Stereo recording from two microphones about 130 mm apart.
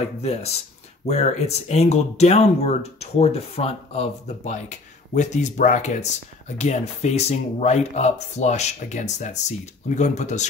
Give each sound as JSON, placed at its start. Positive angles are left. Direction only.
{"t": 0.2, "sound": "speech", "side_deg": 55}